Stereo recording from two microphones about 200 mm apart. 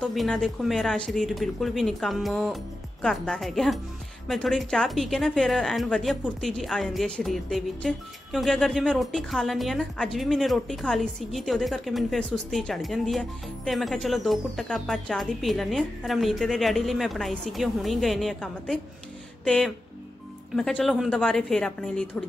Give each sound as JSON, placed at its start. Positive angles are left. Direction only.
{"t": 0.0, "sound": "a woman's voice", "side_deg": 0}